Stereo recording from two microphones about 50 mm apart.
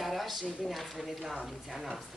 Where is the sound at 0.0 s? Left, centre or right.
Centre.